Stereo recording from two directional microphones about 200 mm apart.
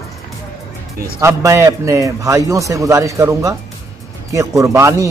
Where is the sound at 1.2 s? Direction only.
15° right (ahead or behind).